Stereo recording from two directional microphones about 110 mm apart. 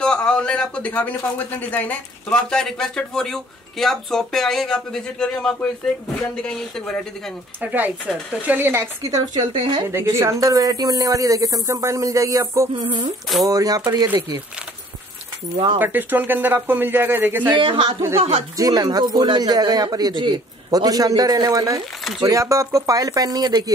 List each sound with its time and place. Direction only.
0.0 s speech: 10° left (ahead or behind)
7.6 s speech: 15° right (ahead or behind); by 9.8 s 45° right (ahead or behind)
9.8 s speech: 25° right (ahead or behind)
15.5 s a woman's voice: 50° right (ahead or behind)
15.8 s speech: 15° right (ahead or behind)
17.5 s a woman's voice: 50° right (ahead or behind)
18.6 s speech: 35° right (ahead or behind)